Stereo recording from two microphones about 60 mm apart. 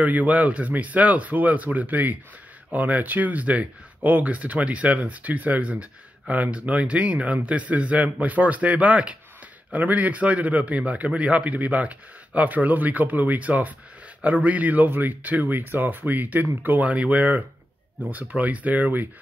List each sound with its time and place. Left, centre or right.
0.0 s speech: right